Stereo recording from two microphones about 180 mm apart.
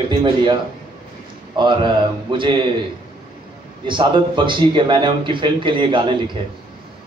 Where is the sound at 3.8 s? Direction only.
25° right (ahead or behind).